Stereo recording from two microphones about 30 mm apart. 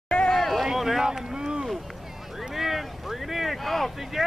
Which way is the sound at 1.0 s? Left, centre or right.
Centre.